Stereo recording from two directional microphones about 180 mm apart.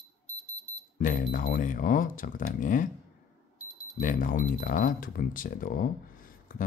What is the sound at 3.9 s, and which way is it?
Speech, 50° left (ahead or behind).